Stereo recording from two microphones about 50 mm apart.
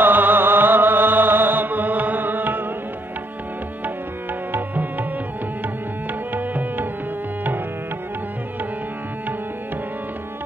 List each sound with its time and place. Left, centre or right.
0.0 s music: right
4.5 s music: right
6.3 s music: right